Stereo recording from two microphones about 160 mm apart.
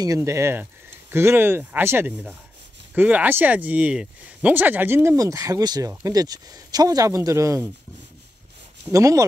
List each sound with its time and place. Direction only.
0.0 s speech: 20° right (ahead or behind)
8.9 s speech: 20° right (ahead or behind)